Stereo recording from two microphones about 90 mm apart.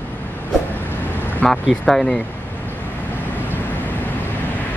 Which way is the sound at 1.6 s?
5° left (ahead or behind).